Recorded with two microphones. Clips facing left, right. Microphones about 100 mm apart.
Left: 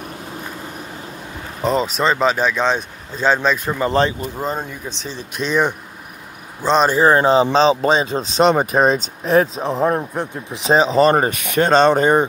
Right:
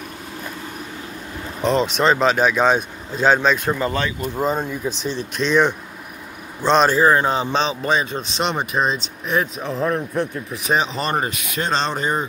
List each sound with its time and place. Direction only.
1.6 s speech: 5° left (ahead or behind)
6.9 s speech: 25° left (ahead or behind); by 9.0 s 45° left (ahead or behind)
9.2 s speech: 35° left (ahead or behind)
11.4 s speech: 55° left (ahead or behind)